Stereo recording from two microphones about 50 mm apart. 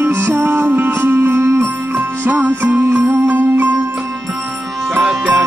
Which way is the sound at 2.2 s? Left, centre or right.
Right.